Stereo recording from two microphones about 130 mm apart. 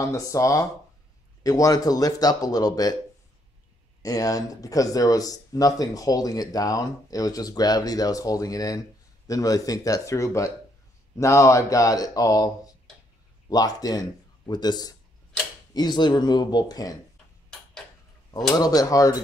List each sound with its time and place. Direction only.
0.0 s speech: 25° left (ahead or behind)
4.0 s speech: 25° left (ahead or behind)
18.5 s speech: 30° left (ahead or behind)